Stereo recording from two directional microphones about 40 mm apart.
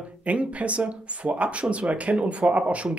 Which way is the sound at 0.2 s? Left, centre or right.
Right.